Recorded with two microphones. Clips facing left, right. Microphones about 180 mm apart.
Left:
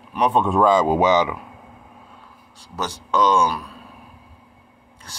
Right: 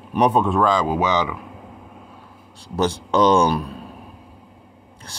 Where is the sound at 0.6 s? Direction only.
20° left (ahead or behind).